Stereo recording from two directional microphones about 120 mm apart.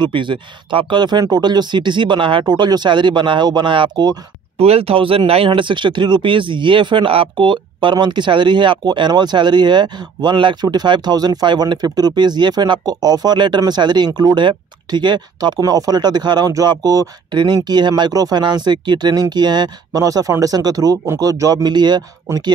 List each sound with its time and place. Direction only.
0.0 s speech: 40° right (ahead or behind)
4.6 s speech: 55° right (ahead or behind); by 22.5 s 35° right (ahead or behind)